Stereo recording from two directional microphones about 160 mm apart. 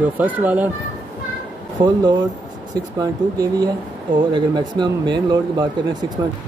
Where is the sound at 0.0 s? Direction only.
10° right (ahead or behind).